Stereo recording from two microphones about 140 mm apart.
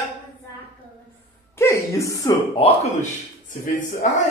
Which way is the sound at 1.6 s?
20° left (ahead or behind).